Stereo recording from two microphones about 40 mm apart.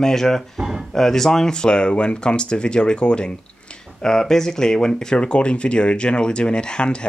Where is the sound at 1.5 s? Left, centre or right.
Left.